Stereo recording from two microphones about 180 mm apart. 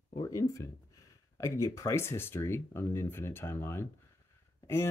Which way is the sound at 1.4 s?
15° left (ahead or behind).